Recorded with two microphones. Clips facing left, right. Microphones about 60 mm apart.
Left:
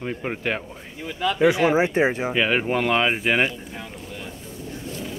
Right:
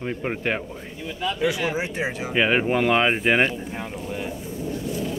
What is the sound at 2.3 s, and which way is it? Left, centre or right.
Speech, centre.